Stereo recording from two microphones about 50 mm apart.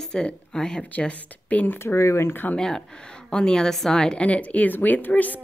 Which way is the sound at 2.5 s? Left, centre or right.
Centre.